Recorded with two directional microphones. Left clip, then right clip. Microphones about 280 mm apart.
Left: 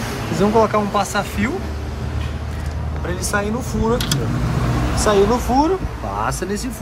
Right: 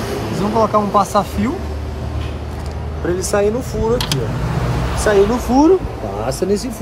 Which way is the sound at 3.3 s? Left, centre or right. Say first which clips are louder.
Right 5 dB; centre.